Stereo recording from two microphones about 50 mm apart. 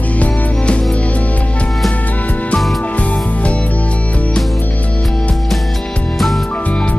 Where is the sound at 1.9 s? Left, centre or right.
Left.